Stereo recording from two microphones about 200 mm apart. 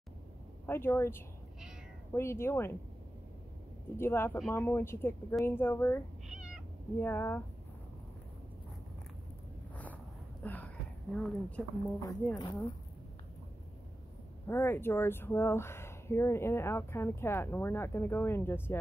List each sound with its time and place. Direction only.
0.7 s speech: 10° left (ahead or behind)
3.9 s speech: 10° left (ahead or behind)
6.2 s cat: 5° right (ahead or behind)
7.0 s speech: 10° left (ahead or behind)
10.4 s a sound: 10° left (ahead or behind)
11.1 s a woman's voice: 5° left (ahead or behind)
12.0 s speech: 15° left (ahead or behind)
14.5 s speech: 10° left (ahead or behind)